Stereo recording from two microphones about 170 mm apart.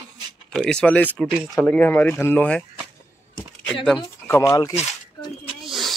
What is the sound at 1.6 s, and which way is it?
Speech, 10° left (ahead or behind).